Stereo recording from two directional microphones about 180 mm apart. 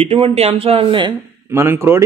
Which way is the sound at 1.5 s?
15° right (ahead or behind).